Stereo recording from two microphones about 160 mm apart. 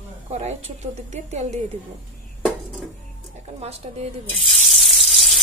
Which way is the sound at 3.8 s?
40° right (ahead or behind).